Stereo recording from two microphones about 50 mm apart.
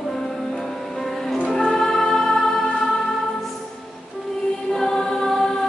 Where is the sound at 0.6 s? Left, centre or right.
Centre.